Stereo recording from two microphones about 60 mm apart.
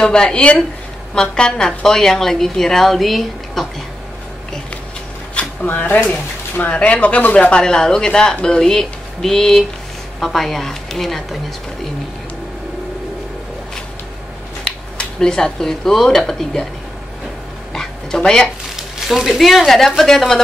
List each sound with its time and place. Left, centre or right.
0.0 s a woman's voice: centre
5.3 s a sound: left
6.0 s speech: left
7.6 s a woman's voice: centre
14.6 s speech: centre
17.7 s dog: centre
18.8 s speech: centre